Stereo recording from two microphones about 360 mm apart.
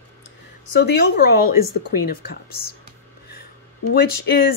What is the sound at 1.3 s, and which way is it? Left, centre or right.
Speech, left.